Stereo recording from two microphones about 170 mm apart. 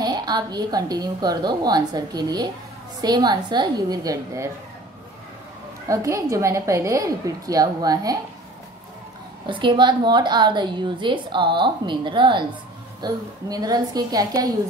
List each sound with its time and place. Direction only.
0.0 s a woman's voice: 25° right (ahead or behind)
5.9 s a woman's voice: 20° right (ahead or behind)
9.5 s a woman's voice: 30° right (ahead or behind)